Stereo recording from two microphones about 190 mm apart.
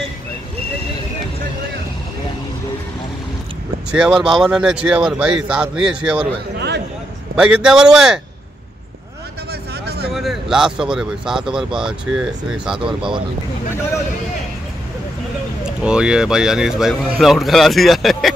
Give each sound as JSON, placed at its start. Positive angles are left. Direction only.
{"t": 3.9, "sound": "speech", "side_deg": -5}
{"t": 7.3, "sound": "speech", "side_deg": -5}
{"t": 9.5, "sound": "vehicle", "side_deg": -60}
{"t": 10.1, "sound": "speech", "side_deg": 0}
{"t": 12.8, "sound": "speech", "side_deg": -25}
{"t": 15.6, "sound": "speech", "side_deg": -5}